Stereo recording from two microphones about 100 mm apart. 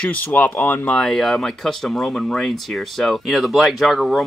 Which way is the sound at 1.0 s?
Centre (ahead or behind).